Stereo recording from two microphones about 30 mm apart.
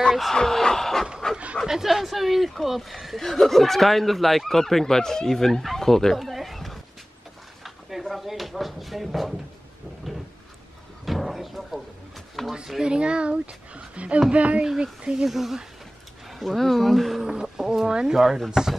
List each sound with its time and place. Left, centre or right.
0.3 s speech: centre
1.2 s dog: left
1.7 s speech: centre
3.2 s speech: centre
6.3 s dog: centre
8.1 s speech: centre
11.1 s a sound: centre
12.4 s speech: centre
12.8 s a woman's voice: right
14.8 s speech: right
15.2 s speech: centre
16.3 s speech: centre
17.2 s speech: right
17.6 s speech: centre